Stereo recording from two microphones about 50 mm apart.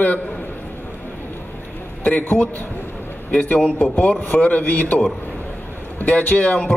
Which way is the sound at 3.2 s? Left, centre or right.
Left.